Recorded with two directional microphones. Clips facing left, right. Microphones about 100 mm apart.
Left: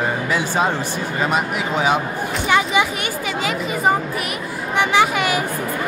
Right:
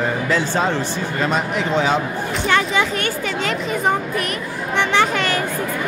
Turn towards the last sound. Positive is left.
turn(degrees=10)  # may be behind; listen again after turning